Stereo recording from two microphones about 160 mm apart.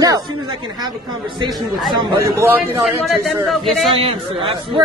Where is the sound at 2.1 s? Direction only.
15° right (ahead or behind).